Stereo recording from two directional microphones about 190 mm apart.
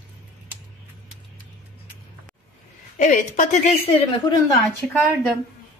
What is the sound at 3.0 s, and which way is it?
Speech, 40° left (ahead or behind).